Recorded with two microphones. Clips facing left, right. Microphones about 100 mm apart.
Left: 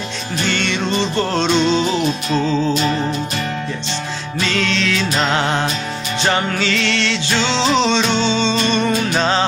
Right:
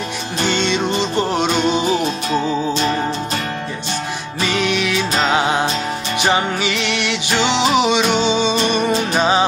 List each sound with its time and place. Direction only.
0.5 s music: 20° right (ahead or behind)
4.4 s music: 15° right (ahead or behind)